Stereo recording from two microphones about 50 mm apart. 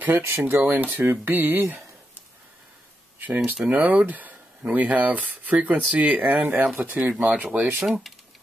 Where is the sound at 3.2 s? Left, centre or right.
Right.